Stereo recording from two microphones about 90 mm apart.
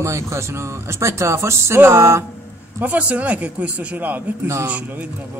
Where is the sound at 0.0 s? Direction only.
35° right (ahead or behind).